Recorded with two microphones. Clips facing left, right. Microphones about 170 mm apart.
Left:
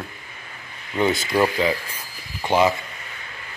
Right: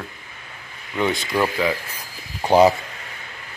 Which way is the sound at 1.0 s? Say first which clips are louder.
Left 2 dB; 5° left (ahead or behind).